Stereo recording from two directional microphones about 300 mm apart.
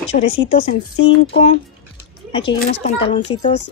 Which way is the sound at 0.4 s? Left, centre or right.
Centre.